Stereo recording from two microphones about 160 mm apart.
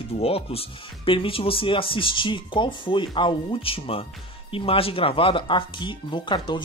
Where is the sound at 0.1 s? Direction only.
40° left (ahead or behind).